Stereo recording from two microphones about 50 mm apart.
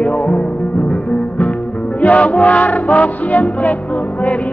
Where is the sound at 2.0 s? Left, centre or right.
Left.